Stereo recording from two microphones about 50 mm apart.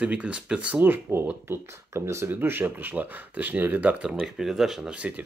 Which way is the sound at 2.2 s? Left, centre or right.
Right.